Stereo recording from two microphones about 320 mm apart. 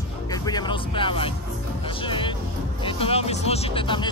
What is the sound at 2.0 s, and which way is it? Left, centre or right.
Speech, centre.